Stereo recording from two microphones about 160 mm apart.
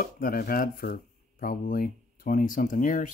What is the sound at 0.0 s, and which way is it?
Speech, 65° left (ahead or behind).